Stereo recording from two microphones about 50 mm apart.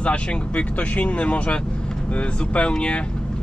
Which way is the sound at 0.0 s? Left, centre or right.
Left.